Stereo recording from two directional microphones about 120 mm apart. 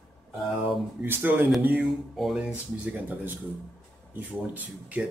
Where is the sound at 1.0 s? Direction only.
15° right (ahead or behind).